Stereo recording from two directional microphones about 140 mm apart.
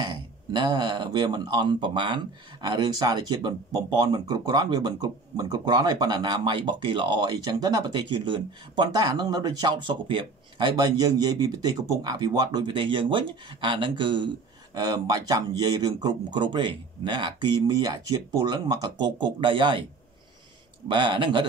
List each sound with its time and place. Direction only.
0.0 s speech: 30° right (ahead or behind)
20.9 s speech: 35° right (ahead or behind)